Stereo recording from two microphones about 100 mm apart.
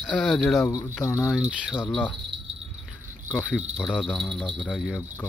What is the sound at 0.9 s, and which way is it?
Speech, 25° left (ahead or behind).